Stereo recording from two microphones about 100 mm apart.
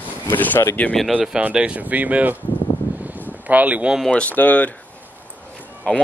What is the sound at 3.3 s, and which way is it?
Speech, 15° right (ahead or behind).